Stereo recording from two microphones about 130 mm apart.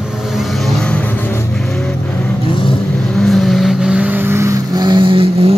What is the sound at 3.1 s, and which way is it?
Vehicle, centre (ahead or behind).